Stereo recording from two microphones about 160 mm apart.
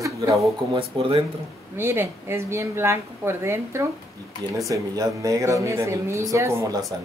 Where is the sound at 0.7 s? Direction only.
35° right (ahead or behind).